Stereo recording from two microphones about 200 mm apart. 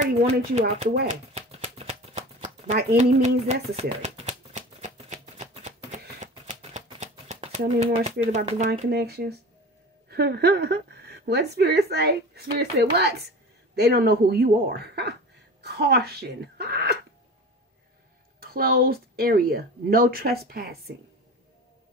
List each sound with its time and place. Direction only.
0.0 s speech: 35° right (ahead or behind)
1.0 s shuffling cards: 30° right (ahead or behind)
3.0 s speech: 35° right (ahead or behind)
3.7 s a sound: 35° right (ahead or behind)
8.6 s a woman's voice: 55° right (ahead or behind)
18.4 s speech: 50° right (ahead or behind)